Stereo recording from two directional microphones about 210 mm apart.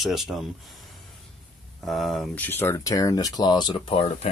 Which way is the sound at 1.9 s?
Centre (ahead or behind).